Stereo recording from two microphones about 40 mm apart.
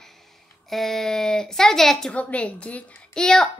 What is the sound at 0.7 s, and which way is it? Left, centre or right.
A child's voice, centre.